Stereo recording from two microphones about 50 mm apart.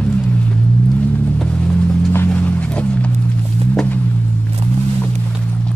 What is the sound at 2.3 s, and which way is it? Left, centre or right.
Music, left.